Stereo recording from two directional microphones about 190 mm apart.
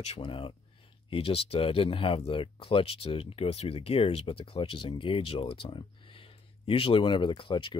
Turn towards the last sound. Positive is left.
turn(degrees=25)  # may be behind; listen again after turning